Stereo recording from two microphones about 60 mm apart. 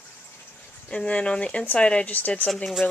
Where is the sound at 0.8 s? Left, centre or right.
Centre.